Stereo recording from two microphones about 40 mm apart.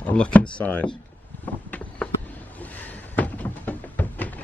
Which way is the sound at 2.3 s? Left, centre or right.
Left.